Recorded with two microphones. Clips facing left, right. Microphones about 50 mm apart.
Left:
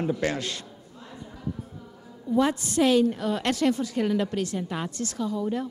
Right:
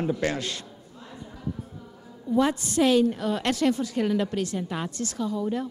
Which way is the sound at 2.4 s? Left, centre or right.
Centre.